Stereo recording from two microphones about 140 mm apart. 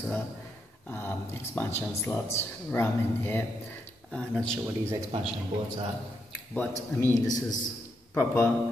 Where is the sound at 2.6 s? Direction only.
15° left (ahead or behind).